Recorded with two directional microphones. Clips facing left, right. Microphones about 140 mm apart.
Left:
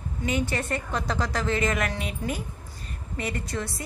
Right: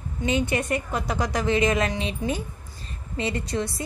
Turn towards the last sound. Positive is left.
turn(degrees=-20)  # may be behind; listen again after turning